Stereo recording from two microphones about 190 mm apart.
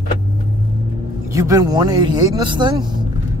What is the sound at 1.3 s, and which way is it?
A man's voice, 15° right (ahead or behind).